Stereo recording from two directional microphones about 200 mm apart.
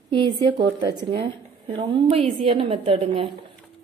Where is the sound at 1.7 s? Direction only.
30° right (ahead or behind).